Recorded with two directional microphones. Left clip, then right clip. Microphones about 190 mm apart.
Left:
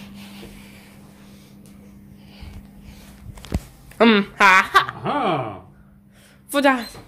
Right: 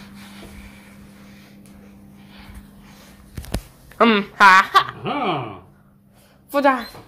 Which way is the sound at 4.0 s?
20° left (ahead or behind).